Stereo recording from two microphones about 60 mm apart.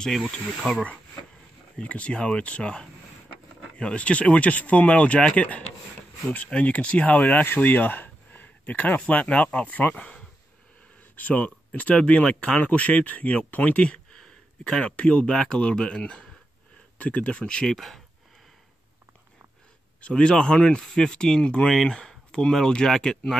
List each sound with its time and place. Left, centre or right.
0.0 s speech: centre
1.8 s speech: left; by 18.0 s centre
20.0 s speech: centre